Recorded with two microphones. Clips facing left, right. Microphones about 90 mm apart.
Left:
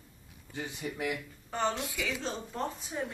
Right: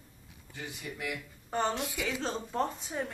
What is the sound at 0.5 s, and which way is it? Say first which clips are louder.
Speech: left 4 dB; 25° left (ahead or behind).